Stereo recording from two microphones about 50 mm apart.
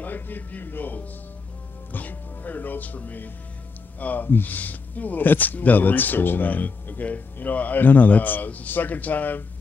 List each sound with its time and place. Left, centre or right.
0.0 s speech: left